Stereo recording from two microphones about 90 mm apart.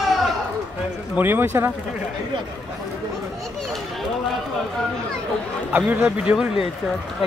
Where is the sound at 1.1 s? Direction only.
25° right (ahead or behind).